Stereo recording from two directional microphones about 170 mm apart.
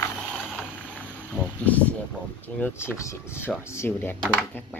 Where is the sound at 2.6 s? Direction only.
15° left (ahead or behind).